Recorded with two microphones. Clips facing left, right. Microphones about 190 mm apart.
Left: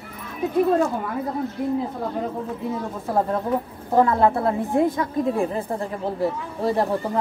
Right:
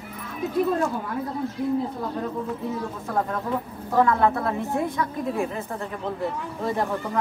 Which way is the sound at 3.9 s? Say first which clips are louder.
Left 2 dB; 30° left (ahead or behind).